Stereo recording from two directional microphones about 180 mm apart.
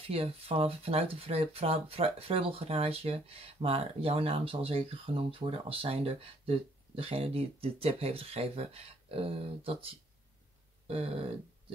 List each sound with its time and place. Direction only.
0.0 s speech: 30° right (ahead or behind)